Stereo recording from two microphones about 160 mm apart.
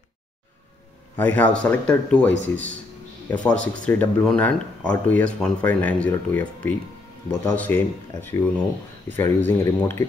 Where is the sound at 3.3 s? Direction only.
10° left (ahead or behind).